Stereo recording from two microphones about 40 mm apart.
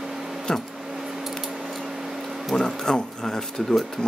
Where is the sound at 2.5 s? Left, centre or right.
Centre.